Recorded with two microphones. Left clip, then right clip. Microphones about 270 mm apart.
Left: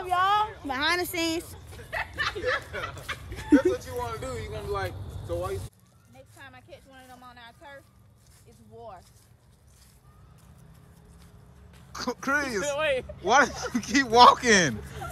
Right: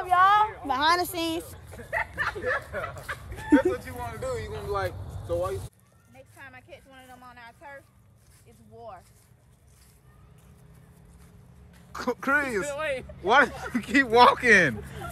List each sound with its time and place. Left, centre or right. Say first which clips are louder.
0.0 s a sound: right 4 dB; centre
2.4 s speech: even; centre
3.0 s fowl: even; centre
3.4 s speech: even; centre
6.1 s a sound: right 2 dB; centre
11.9 s speech: right 2 dB; centre